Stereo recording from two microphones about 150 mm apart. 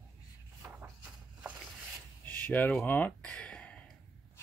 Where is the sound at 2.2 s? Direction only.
10° left (ahead or behind).